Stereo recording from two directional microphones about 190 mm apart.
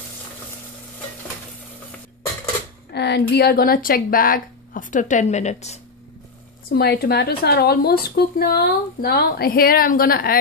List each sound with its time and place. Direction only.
2.9 s speech: 60° left (ahead or behind); by 5.8 s 35° left (ahead or behind)
6.7 s speech: 55° left (ahead or behind)